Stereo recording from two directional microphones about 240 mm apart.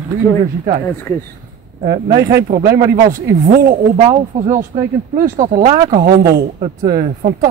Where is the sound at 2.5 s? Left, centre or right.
Right.